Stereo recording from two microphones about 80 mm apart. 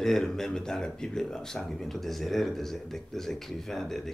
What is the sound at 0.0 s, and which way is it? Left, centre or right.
Speech, centre.